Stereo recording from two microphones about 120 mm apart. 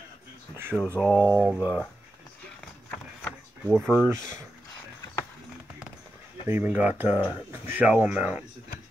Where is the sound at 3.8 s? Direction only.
15° right (ahead or behind).